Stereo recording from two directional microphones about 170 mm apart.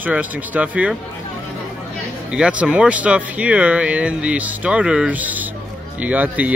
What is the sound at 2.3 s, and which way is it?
Speech, 5° right (ahead or behind).